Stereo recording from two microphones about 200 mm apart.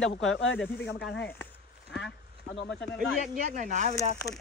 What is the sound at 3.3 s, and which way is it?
Speech, 40° right (ahead or behind).